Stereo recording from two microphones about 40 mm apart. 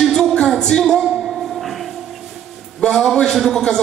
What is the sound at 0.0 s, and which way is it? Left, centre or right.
Music, centre.